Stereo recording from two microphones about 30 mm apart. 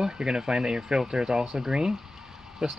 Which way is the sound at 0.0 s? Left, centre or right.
Centre.